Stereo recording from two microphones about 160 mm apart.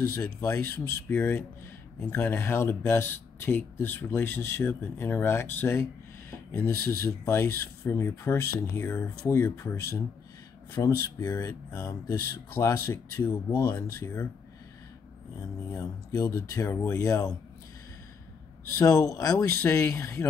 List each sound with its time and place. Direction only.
0.1 s speech: 20° left (ahead or behind)
15.7 s speech: 20° left (ahead or behind)
18.8 s speech: 20° left (ahead or behind)